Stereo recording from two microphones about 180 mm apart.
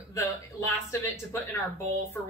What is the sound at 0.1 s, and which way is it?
Speech, 15° left (ahead or behind).